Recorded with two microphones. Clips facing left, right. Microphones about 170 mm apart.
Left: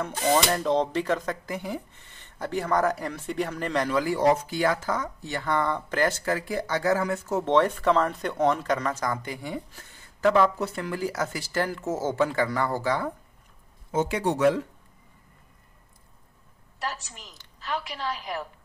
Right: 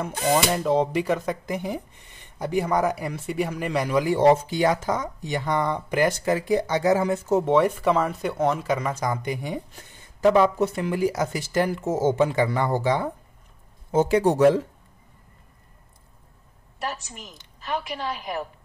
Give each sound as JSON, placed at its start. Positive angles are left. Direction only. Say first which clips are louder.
{"t": 0.0, "sound": "speech", "louder": "right 1 dB", "side_deg": -10}
{"t": 7.4, "sound": "speech", "louder": "left 1 dB", "side_deg": -10}
{"t": 13.9, "sound": "speech", "louder": "right 6 dB", "side_deg": -35}
{"t": 16.8, "sound": "speech", "louder": "right 2 dB", "side_deg": -15}